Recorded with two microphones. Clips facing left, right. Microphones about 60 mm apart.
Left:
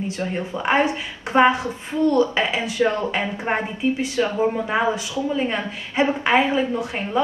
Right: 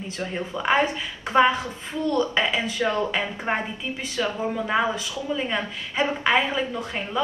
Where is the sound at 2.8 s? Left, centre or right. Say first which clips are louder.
Left 4 dB; left.